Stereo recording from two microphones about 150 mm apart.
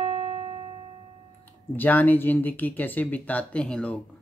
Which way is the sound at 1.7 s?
10° left (ahead or behind).